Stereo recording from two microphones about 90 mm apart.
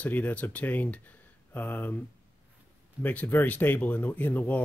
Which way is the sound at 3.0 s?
20° left (ahead or behind).